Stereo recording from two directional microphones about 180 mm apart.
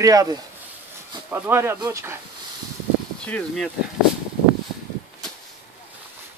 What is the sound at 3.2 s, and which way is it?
Speech, 5° left (ahead or behind).